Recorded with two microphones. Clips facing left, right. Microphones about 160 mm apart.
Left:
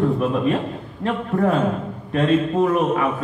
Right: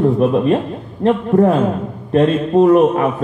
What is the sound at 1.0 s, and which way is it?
A man's voice, 30° right (ahead or behind).